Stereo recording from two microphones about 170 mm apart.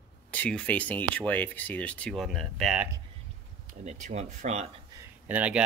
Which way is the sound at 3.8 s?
40° right (ahead or behind).